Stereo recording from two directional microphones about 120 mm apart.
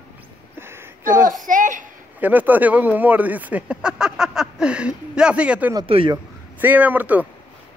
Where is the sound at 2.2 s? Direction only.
15° right (ahead or behind).